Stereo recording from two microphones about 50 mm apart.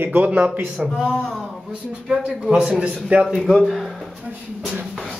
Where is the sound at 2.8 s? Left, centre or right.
Right.